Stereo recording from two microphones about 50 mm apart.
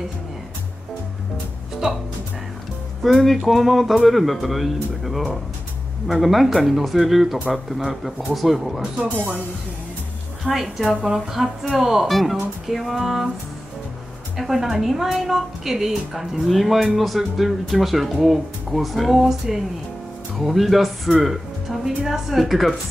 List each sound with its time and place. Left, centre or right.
3.0 s a woman's voice: centre
9.1 s speech: right
10.4 s a woman's voice: centre
14.3 s a woman's voice: centre